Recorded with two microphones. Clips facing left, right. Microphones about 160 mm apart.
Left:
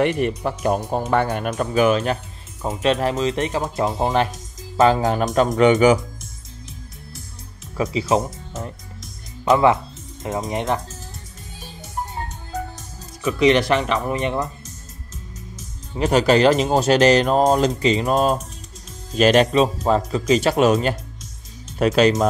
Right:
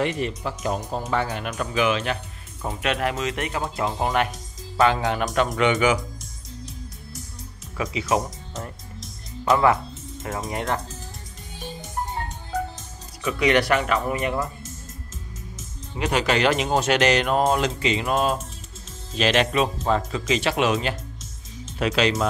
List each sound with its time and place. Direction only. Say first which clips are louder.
0.0 s speech: left 5 dB; 60° left (ahead or behind)
1.6 s speech: left 5 dB; 40° left (ahead or behind)
2.6 s speech: left 5 dB; 25° left (ahead or behind)
7.7 s speech: left 4 dB; 30° left (ahead or behind)
13.2 s speech: left 4 dB; 25° left (ahead or behind)
16.0 s speech: left 6 dB; 35° left (ahead or behind)